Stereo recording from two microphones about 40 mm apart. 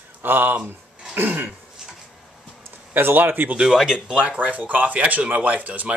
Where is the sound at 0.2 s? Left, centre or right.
Right.